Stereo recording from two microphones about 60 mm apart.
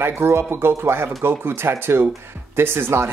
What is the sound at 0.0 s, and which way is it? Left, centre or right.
Speech, right.